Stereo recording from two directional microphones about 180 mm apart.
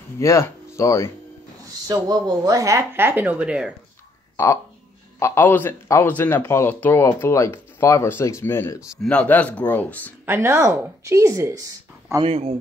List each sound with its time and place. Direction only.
0.2 s speech: 15° left (ahead or behind)
1.9 s speech: 20° right (ahead or behind); by 3.7 s 5° right (ahead or behind)
5.2 s speech: 15° left (ahead or behind)
10.2 s speech: 15° right (ahead or behind)
12.3 s speech: 35° right (ahead or behind)